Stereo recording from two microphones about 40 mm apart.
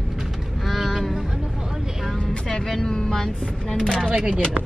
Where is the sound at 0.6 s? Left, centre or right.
Centre.